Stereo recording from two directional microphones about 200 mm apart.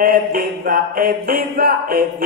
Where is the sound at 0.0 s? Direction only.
45° right (ahead or behind).